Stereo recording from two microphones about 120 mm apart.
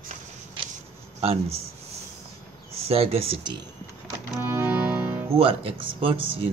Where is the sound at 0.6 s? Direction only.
45° right (ahead or behind).